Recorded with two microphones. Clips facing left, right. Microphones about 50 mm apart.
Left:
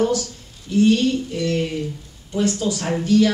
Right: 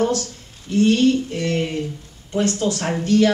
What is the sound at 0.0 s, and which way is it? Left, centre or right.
Speech, right.